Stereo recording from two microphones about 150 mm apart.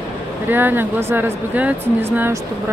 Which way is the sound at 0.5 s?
15° right (ahead or behind).